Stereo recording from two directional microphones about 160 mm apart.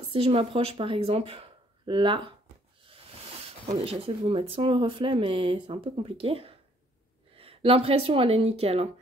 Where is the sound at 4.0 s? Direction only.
35° right (ahead or behind).